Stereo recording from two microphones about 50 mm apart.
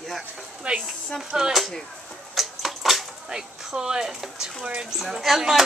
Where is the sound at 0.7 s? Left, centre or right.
Right.